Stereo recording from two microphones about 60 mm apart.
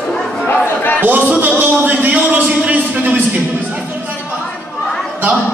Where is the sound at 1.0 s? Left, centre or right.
Right.